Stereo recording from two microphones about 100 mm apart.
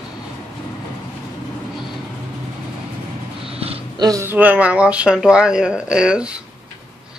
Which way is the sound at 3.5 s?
80° right.